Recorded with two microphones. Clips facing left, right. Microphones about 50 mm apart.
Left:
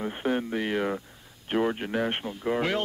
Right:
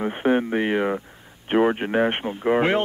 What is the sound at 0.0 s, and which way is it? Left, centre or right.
A man's voice, right.